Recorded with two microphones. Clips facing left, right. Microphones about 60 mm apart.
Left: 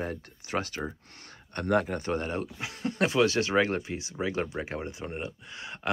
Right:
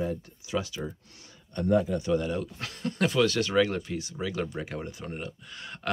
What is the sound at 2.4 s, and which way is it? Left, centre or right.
Speech, centre.